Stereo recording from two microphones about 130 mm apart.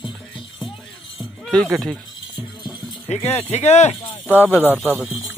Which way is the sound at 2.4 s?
35° left (ahead or behind).